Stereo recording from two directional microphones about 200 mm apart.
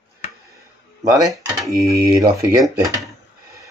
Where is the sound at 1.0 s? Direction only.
15° right (ahead or behind).